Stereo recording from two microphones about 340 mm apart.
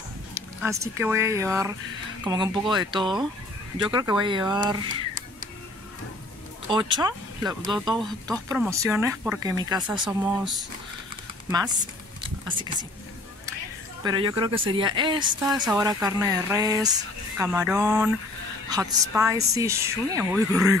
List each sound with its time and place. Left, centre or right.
0.3 s speech: centre
6.7 s speech: centre
7.8 s speech: centre
11.5 s speech: centre
14.0 s speech: centre